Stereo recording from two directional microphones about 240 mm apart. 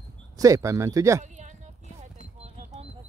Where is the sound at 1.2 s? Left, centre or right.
Right.